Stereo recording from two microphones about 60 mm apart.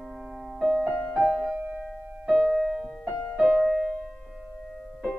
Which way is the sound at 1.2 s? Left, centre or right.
Right.